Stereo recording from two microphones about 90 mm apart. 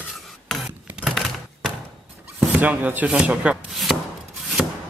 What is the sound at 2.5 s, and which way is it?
Speech, 20° right (ahead or behind).